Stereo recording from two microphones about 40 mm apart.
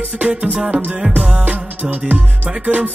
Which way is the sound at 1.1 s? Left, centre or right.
Right.